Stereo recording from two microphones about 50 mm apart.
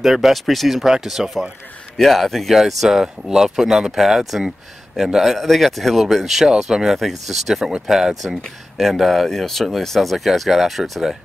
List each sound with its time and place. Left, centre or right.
0.0 s speech: centre